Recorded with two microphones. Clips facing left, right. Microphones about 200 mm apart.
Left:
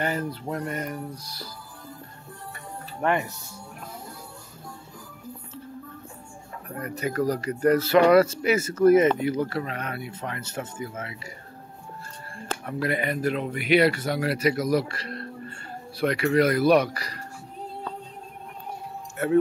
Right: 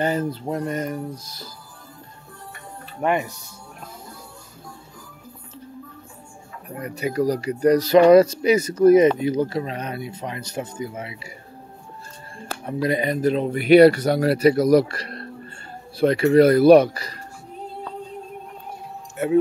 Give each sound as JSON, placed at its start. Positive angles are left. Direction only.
{"t": 0.0, "sound": "music", "side_deg": -25}
{"t": 3.0, "sound": "speech", "side_deg": -15}
{"t": 6.7, "sound": "speech", "side_deg": -15}
{"t": 12.6, "sound": "speech", "side_deg": -20}
{"t": 16.0, "sound": "music", "side_deg": -25}